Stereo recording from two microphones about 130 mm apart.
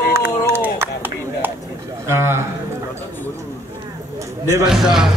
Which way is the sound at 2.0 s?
20° right (ahead or behind).